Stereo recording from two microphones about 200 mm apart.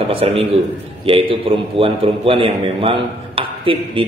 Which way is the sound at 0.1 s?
30° right (ahead or behind).